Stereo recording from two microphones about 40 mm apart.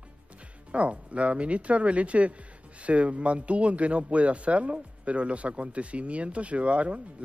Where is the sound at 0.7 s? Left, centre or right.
Right.